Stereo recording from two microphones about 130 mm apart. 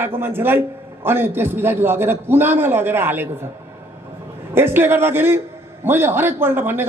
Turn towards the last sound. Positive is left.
turn(degrees=-15)  # may be behind; listen again after turning